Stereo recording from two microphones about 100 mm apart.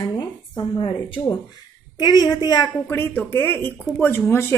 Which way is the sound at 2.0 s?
45° left (ahead or behind).